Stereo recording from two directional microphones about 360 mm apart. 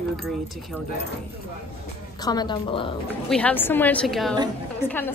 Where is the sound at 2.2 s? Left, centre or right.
Centre.